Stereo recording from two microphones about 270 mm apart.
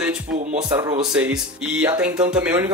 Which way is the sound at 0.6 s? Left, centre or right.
Centre.